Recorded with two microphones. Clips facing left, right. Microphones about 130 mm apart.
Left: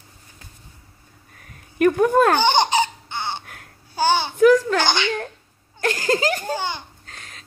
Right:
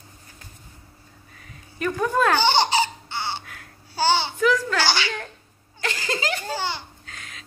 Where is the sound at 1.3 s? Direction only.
55° left (ahead or behind).